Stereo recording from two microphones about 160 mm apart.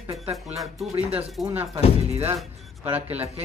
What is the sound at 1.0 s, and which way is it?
Speech, 40° right (ahead or behind).